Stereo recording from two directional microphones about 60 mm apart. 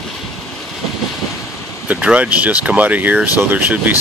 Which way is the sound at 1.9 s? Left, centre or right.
Right.